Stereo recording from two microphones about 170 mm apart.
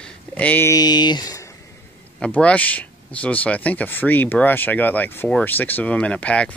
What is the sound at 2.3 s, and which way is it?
Speech, 10° left (ahead or behind).